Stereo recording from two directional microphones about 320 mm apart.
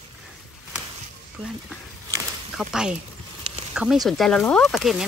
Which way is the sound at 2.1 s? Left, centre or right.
Centre.